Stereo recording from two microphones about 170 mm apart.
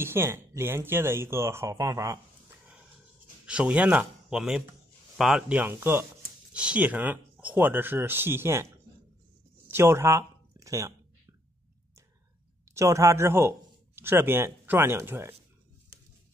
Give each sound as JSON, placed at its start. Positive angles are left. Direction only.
{"t": 0.0, "sound": "speech", "side_deg": -15}
{"t": 3.4, "sound": "speech", "side_deg": -5}
{"t": 9.7, "sound": "a sound", "side_deg": -15}
{"t": 12.7, "sound": "speech", "side_deg": -15}